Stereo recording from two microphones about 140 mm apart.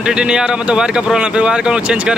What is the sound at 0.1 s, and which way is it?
Speech, 5° right (ahead or behind).